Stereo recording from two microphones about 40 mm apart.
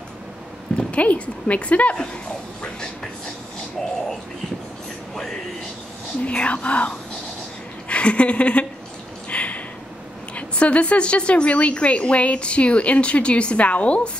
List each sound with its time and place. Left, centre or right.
0.7 s a woman's voice: left
2.6 s train: centre
6.2 s a woman's voice: left
7.9 s a sound: left
10.3 s a woman's voice: left